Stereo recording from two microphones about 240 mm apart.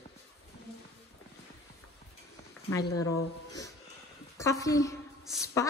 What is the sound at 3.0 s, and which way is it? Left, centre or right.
A woman's voice, centre.